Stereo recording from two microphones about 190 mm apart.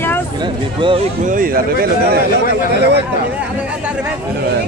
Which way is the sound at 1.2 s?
45° right (ahead or behind).